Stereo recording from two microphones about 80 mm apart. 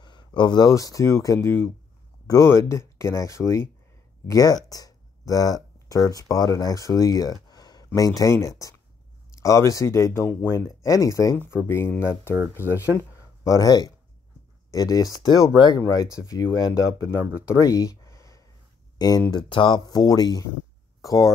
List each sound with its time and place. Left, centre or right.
0.0 s a sound: left
0.7 s speech: left
1.4 s speech: left
4.3 s speech: left
10.8 s speech: left
11.3 s speech: left
13.4 s speech: left
15.5 s speech: left
16.0 s speech: left
17.5 s a sound: left
18.9 s speech: left
19.3 s speech: left
20.0 s speech: left